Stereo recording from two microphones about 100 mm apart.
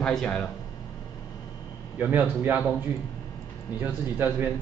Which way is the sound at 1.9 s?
20° right (ahead or behind).